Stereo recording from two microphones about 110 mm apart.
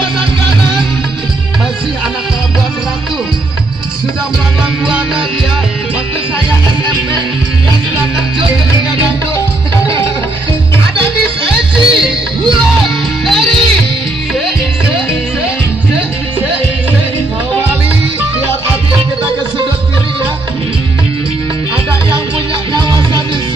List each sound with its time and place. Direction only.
4.8 s music: 10° right (ahead or behind)
11.5 s music: centre (ahead or behind)
13.3 s music: 5° left (ahead or behind)
22.8 s music: 40° right (ahead or behind)